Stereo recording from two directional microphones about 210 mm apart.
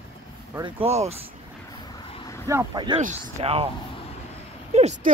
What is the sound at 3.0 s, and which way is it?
Speech, 35° right (ahead or behind).